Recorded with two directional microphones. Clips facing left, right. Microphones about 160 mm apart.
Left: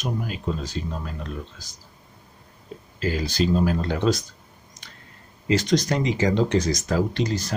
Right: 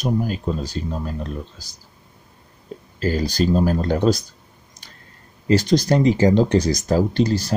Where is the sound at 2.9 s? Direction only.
40° right (ahead or behind).